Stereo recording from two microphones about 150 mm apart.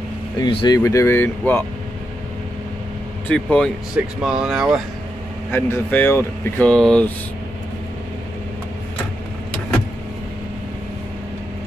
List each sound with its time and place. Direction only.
0.4 s speech: 30° left (ahead or behind)
0.7 s speech: 20° left (ahead or behind)
3.3 s speech: 10° left (ahead or behind)
5.5 s speech: 15° left (ahead or behind)